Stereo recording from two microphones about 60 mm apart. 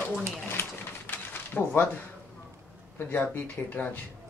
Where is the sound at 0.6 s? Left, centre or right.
Left.